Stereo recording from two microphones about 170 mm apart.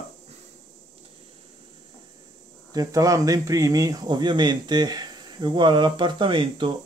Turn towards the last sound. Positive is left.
turn(degrees=-30)  # may be behind; listen again after turning